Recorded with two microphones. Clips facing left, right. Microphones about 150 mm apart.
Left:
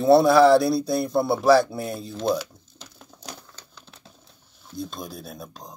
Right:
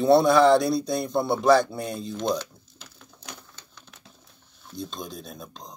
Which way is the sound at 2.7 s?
35° left (ahead or behind).